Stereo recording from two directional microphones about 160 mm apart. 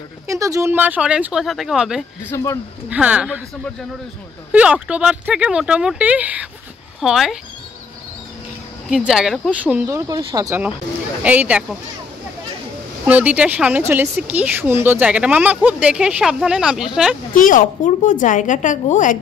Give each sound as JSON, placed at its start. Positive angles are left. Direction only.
{"t": 0.3, "sound": "speech", "side_deg": -20}
{"t": 2.2, "sound": "speech", "side_deg": 20}
{"t": 2.9, "sound": "speech", "side_deg": -10}
{"t": 4.5, "sound": "speech", "side_deg": -10}
{"t": 8.8, "sound": "speech", "side_deg": -5}
{"t": 11.2, "sound": "speech", "side_deg": -10}
{"t": 13.0, "sound": "speech", "side_deg": -10}
{"t": 17.3, "sound": "a woman's voice", "side_deg": 55}